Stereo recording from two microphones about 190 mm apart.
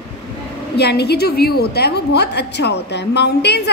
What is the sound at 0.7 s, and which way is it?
A woman's voice, 60° left (ahead or behind).